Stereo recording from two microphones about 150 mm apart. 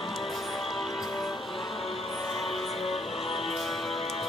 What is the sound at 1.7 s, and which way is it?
Music, 40° left (ahead or behind).